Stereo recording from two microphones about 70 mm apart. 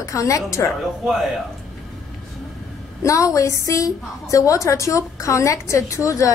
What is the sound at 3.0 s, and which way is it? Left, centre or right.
A woman's voice, left.